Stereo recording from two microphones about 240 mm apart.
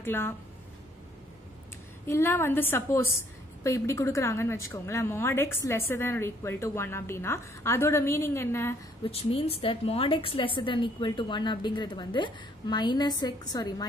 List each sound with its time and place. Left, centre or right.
0.0 s a woman's voice: centre
2.0 s a woman's voice: centre
9.0 s a woman's voice: left